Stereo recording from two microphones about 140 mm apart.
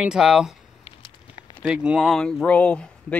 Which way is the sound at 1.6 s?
5° right (ahead or behind).